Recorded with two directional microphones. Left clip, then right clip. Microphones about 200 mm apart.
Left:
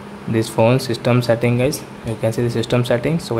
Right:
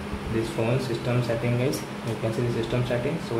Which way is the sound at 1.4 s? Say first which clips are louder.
Left 8 dB; 40° left (ahead or behind).